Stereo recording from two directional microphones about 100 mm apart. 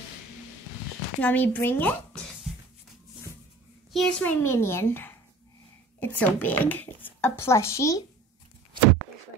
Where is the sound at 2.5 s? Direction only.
Centre (ahead or behind).